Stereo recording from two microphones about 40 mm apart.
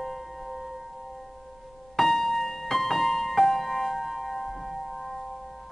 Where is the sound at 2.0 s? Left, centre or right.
Centre.